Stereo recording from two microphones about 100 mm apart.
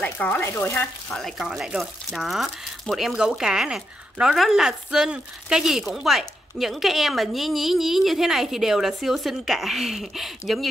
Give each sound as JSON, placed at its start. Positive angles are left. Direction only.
{"t": 0.0, "sound": "speech", "side_deg": 15}
{"t": 1.4, "sound": "speech", "side_deg": -5}